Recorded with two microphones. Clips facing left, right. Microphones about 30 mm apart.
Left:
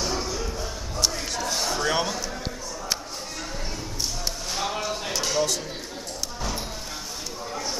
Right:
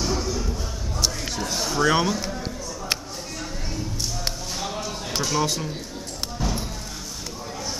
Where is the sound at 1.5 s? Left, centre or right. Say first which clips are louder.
Left 1 dB; centre.